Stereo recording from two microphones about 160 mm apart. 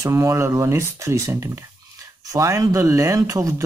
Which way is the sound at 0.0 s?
20° right (ahead or behind).